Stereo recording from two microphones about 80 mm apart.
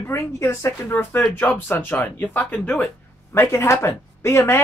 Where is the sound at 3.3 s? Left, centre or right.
Left.